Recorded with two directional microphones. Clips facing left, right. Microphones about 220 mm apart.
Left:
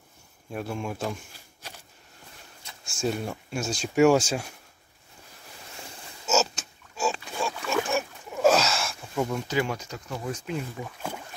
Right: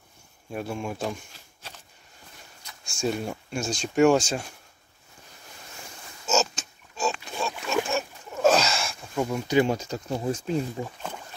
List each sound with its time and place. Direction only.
0.5 s speech: centre (ahead or behind)
2.9 s speech: centre (ahead or behind)
6.2 s pig: 5° left (ahead or behind)
7.9 s a sound: 10° left (ahead or behind); by 9.6 s 5° right (ahead or behind)
9.6 s speech: 25° right (ahead or behind)